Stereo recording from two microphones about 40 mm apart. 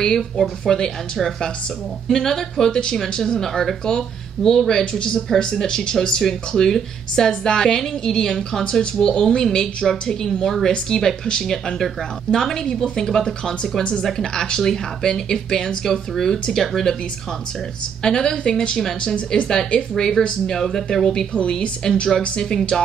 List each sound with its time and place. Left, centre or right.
0.0 s speech: centre
18.0 s speech: centre
18.8 s speech: centre
19.1 s speech: left
20.0 s speech: centre